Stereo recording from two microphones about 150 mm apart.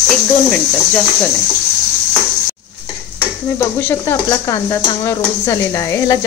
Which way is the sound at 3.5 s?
20° left (ahead or behind).